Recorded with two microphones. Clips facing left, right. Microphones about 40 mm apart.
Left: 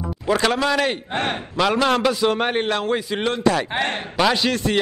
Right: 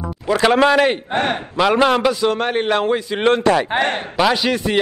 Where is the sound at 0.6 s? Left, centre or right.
Right.